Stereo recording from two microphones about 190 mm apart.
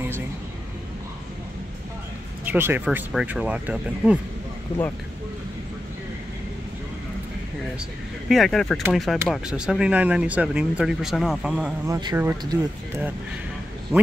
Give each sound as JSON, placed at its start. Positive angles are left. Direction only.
{"t": 2.4, "sound": "speech", "side_deg": -10}
{"t": 8.3, "sound": "speech", "side_deg": 0}
{"t": 11.8, "sound": "speech", "side_deg": -20}